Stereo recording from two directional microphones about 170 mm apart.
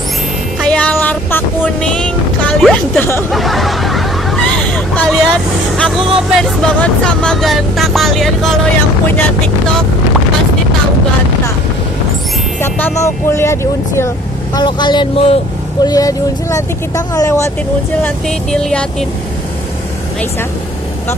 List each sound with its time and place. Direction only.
0.6 s a sound: 5° left (ahead or behind)
1.8 s boat: 5° left (ahead or behind)
2.6 s speech: 10° left (ahead or behind)
3.3 s hubbub: centre (ahead or behind)
6.3 s speech: 5° left (ahead or behind)
12.6 s speech: 10° left (ahead or behind)
14.6 s speech: 25° left (ahead or behind)
18.0 s speech: 5° left (ahead or behind)